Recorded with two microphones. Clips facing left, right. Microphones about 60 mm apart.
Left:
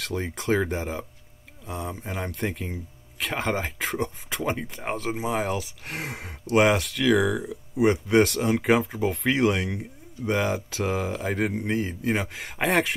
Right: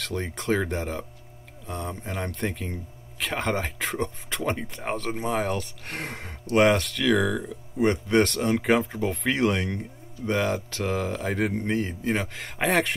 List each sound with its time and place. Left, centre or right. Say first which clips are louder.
0.0 s speech: left 1 dB; centre